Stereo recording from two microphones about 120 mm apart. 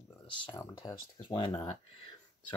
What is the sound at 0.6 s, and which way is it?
Speech, 35° left (ahead or behind).